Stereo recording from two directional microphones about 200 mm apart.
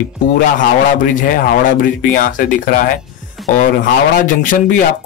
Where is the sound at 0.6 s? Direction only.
40° left (ahead or behind).